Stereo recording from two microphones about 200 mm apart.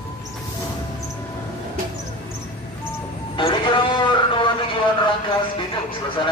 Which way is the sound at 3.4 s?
25° left (ahead or behind).